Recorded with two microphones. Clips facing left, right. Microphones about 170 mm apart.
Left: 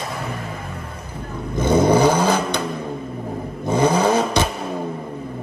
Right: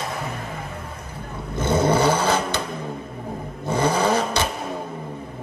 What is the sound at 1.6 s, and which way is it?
Vehicle, 15° left (ahead or behind).